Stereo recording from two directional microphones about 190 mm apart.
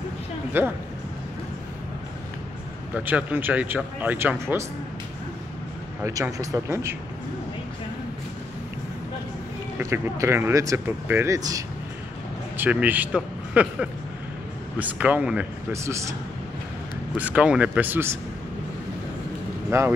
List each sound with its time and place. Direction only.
0.5 s speech: 10° right (ahead or behind)
2.9 s speech: 10° right (ahead or behind)
6.0 s speech: 15° right (ahead or behind)
9.8 s speech: 10° right (ahead or behind)
19.7 s speech: 15° right (ahead or behind)